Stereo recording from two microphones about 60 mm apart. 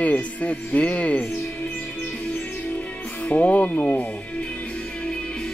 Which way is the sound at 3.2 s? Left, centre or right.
Left.